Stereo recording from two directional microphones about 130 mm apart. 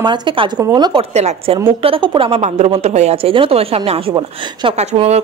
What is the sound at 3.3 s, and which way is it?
A woman's voice, 45° right (ahead or behind).